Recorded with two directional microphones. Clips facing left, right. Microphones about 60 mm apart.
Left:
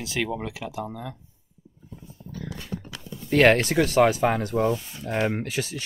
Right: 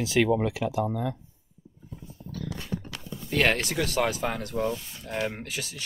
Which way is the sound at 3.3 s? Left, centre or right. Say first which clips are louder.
Left 7 dB; left.